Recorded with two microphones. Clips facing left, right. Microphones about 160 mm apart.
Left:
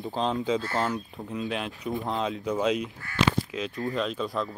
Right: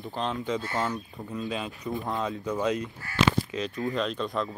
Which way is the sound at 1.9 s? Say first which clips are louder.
Left 1 dB; 20° left (ahead or behind).